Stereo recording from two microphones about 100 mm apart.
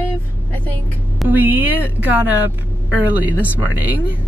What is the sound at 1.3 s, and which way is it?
Speech, 20° right (ahead or behind).